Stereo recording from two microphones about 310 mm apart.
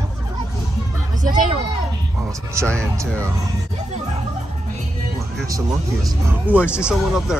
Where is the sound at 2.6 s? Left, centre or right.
Centre.